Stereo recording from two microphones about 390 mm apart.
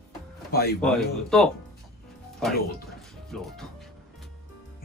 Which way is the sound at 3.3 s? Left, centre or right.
Centre.